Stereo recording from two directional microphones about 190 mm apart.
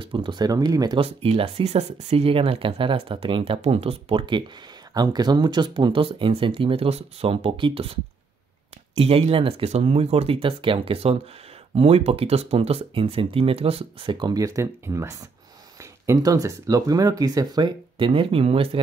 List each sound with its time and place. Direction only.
0.0 s speech: 25° right (ahead or behind)